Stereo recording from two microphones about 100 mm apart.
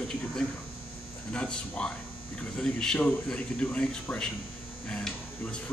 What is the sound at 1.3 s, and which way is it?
Speech, 10° left (ahead or behind).